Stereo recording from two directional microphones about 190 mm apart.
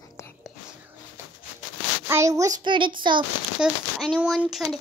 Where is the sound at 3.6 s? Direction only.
Centre (ahead or behind).